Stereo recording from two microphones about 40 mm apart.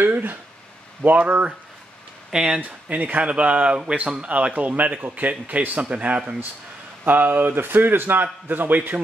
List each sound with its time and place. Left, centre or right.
0.0 s a sound: right
1.0 s speech: right
2.3 s speech: centre
2.6 s speech: right
7.1 s a man's voice: right